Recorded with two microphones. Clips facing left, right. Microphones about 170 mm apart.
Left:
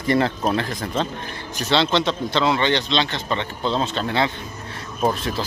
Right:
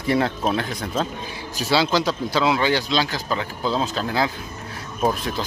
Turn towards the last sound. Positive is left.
turn(degrees=0)  # may be behind; listen again after turning